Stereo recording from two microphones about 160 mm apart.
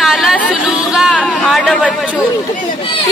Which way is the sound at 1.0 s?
Centre (ahead or behind).